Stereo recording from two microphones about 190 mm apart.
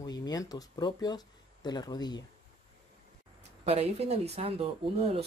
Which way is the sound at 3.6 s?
35° right (ahead or behind).